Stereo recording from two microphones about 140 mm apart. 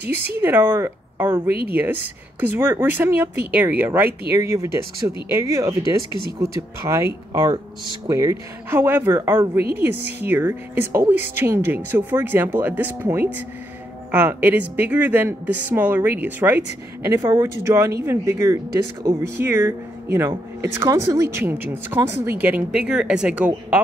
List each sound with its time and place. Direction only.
0.0 s speech: 15° right (ahead or behind)